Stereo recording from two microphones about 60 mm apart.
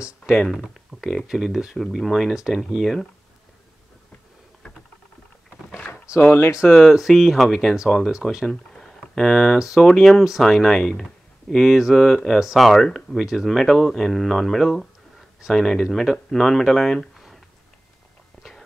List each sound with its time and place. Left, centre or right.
1.2 s speech: centre
6.1 s a sound: centre
6.9 s speech: centre
8.5 s a sound: centre
9.6 s speech: centre
13.2 s speech: centre